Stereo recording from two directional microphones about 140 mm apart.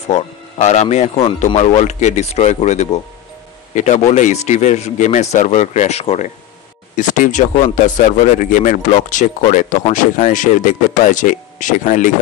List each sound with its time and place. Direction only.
0.1 s speech: 55° left (ahead or behind)
7.0 s speech: 65° left (ahead or behind)